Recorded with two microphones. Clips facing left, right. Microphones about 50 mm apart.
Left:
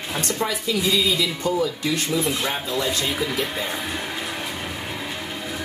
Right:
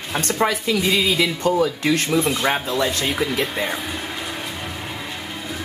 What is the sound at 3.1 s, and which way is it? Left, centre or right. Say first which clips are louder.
Speech: right 3 dB; centre.